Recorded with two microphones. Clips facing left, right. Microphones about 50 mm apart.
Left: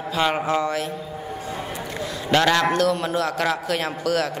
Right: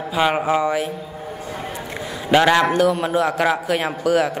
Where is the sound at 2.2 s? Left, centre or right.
Centre.